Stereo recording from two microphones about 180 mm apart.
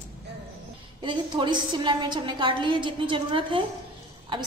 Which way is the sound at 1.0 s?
25° right (ahead or behind).